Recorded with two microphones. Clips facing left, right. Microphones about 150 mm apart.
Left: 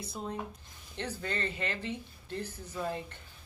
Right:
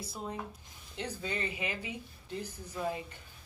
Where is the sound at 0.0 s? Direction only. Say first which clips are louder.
Left 2 dB; 5° right (ahead or behind).